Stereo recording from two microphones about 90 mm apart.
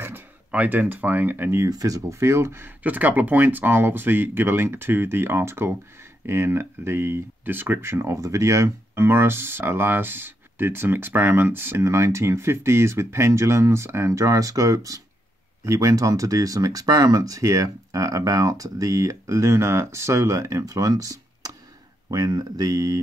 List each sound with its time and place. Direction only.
0.0 s speech: 20° right (ahead or behind)
1.7 s speech: 40° right (ahead or behind)
2.8 s speech: 20° right (ahead or behind); by 22.9 s 45° right (ahead or behind)